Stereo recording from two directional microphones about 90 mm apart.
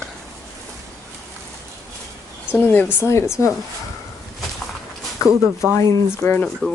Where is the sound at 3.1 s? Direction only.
30° left (ahead or behind).